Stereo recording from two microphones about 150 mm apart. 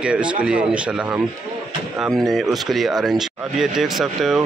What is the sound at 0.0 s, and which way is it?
Speech, 5° right (ahead or behind).